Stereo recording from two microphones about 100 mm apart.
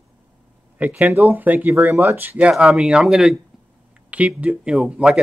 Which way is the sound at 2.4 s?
10° right (ahead or behind).